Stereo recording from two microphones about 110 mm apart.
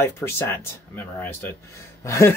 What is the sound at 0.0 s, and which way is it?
Speech, 20° left (ahead or behind).